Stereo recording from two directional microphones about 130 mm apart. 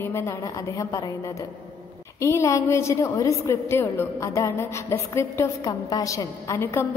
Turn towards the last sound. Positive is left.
turn(degrees=20)  # may be behind; listen again after turning